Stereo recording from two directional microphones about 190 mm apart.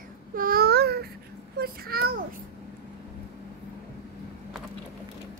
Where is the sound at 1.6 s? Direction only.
50° right (ahead or behind).